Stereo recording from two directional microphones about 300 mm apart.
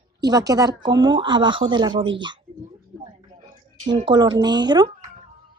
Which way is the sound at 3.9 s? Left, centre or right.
Centre.